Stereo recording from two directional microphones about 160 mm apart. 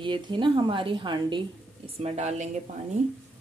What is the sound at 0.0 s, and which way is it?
A woman's voice, 30° right (ahead or behind).